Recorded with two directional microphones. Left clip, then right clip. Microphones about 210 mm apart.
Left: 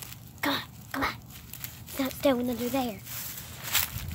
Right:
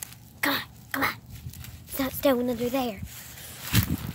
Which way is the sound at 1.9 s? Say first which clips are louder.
Right 2 dB; 30° right (ahead or behind).